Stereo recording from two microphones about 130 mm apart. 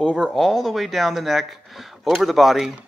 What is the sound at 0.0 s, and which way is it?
Speech, 5° left (ahead or behind).